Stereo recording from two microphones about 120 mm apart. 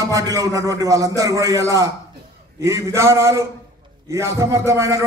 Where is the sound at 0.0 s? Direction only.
30° right (ahead or behind).